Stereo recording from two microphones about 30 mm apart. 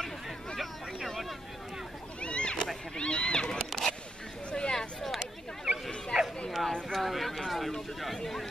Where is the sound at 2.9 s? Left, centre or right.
Left.